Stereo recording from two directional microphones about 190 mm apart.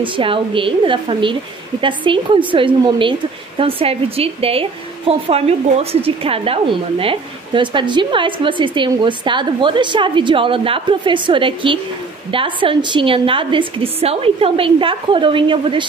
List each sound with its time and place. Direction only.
0.0 s a woman's voice: 25° right (ahead or behind)